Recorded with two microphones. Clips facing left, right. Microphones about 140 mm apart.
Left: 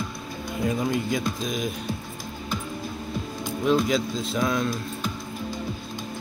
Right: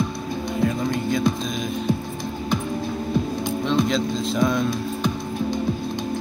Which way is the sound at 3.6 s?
5° left (ahead or behind).